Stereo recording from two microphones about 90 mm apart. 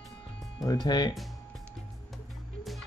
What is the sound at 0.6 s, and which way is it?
Speech, 45° left (ahead or behind).